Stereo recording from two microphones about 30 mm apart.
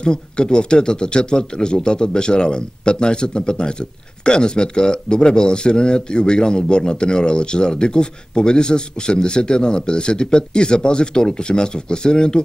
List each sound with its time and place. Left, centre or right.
0.0 s speech: left